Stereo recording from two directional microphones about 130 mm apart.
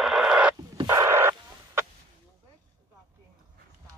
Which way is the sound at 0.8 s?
20° right (ahead or behind).